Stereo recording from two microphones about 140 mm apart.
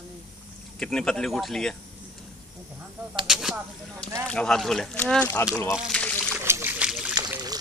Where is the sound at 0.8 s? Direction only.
5° left (ahead or behind).